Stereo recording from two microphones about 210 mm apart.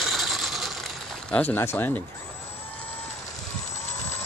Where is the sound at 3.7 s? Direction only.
30° left (ahead or behind).